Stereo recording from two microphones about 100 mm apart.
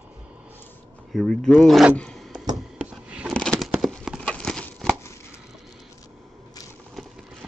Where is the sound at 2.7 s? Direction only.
10° right (ahead or behind).